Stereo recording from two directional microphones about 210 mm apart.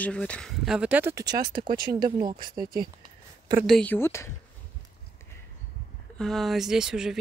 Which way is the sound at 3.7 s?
5° left (ahead or behind).